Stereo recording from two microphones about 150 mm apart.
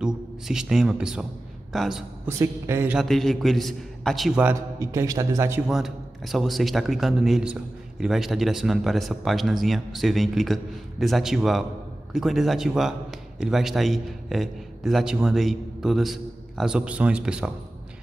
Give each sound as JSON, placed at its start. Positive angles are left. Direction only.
{"t": 0.0, "sound": "a man's voice", "side_deg": -5}
{"t": 2.2, "sound": "speech", "side_deg": -20}
{"t": 3.0, "sound": "a man's voice", "side_deg": 0}
{"t": 4.4, "sound": "a man's voice", "side_deg": -15}
{"t": 5.7, "sound": "a man's voice", "side_deg": 0}